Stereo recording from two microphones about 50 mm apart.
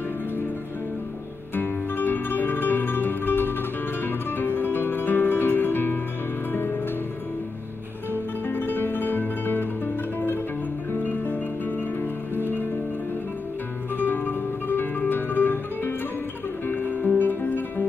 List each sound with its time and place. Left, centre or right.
1.5 s music: left
8.1 s music: left
13.9 s music: left